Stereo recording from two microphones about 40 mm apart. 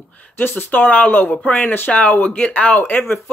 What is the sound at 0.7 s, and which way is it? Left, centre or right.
Speech, left.